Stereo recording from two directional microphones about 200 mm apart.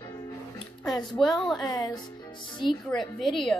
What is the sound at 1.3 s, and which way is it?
Speech, 20° left (ahead or behind).